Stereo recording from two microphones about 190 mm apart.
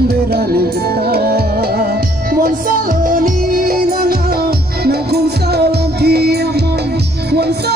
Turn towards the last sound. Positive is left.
turn(degrees=-60)  # may be behind; listen again after turning